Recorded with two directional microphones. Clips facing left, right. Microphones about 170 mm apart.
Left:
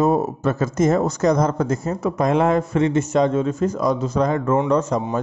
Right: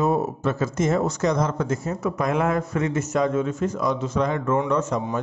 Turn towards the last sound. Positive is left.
turn(degrees=35)  # may be behind; listen again after turning